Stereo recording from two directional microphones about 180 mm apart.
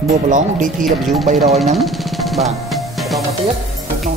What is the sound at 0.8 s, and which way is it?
Speech, centre (ahead or behind).